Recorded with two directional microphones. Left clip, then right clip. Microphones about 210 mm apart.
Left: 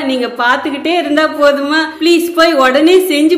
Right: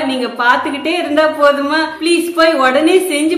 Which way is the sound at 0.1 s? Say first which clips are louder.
Left 1 dB; 25° left (ahead or behind).